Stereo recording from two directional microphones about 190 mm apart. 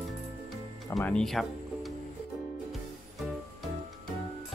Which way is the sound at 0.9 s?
5° left (ahead or behind).